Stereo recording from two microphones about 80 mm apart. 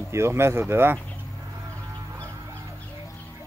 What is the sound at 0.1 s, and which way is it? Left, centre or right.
Speech, right.